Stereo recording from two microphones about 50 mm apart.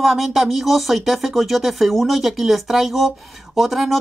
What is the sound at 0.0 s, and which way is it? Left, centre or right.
Speech, centre.